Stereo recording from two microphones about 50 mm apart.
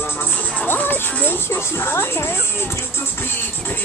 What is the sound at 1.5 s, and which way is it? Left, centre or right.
Music, left.